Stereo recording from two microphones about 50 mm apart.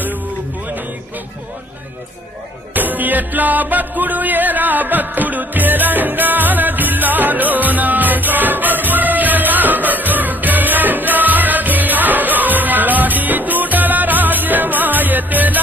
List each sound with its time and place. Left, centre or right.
2.7 s music: right